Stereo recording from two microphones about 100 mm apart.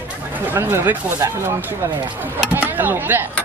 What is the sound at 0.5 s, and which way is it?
Speech, 20° right (ahead or behind).